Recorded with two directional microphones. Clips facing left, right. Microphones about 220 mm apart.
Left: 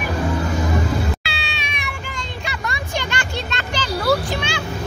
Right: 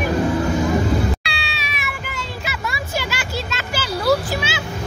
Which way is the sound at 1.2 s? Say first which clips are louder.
Even; centre (ahead or behind).